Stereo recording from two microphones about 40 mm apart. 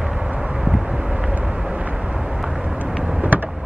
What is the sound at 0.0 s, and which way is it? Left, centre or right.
Vehicle, centre.